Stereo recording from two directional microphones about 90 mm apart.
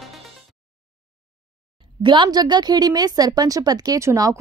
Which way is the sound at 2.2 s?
50° right (ahead or behind).